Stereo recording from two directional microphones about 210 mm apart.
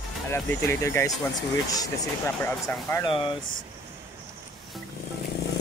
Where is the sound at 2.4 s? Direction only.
15° left (ahead or behind).